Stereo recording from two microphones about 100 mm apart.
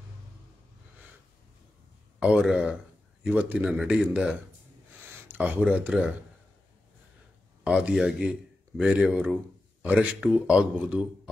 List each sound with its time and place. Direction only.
2.1 s speech: 10° right (ahead or behind)
7.6 s speech: 10° right (ahead or behind)